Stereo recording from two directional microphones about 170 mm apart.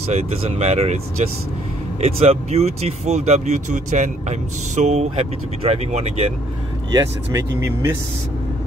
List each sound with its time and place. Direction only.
0.1 s speech: 40° right (ahead or behind)
6.9 s speech: 20° right (ahead or behind)